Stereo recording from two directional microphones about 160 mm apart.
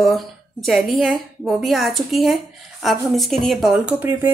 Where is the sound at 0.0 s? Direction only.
Centre (ahead or behind).